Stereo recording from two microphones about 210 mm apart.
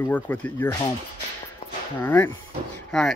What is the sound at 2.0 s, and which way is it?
Speech, 10° left (ahead or behind).